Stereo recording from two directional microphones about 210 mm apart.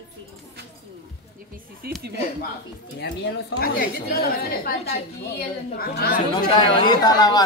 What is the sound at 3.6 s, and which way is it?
A woman's voice, 45° left (ahead or behind).